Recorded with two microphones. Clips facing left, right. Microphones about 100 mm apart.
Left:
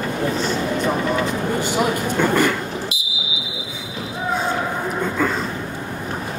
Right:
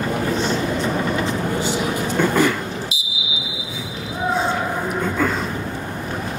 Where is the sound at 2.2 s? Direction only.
Centre (ahead or behind).